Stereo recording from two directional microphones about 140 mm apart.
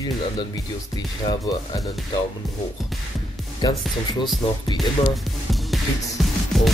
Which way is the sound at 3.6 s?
30° left (ahead or behind).